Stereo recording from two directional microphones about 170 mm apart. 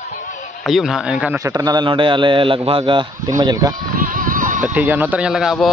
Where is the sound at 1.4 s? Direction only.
20° right (ahead or behind).